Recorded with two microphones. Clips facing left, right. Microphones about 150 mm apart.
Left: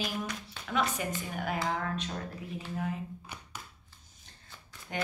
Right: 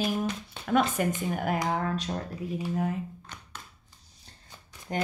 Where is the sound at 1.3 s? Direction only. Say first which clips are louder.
Right 5 dB; 45° right (ahead or behind).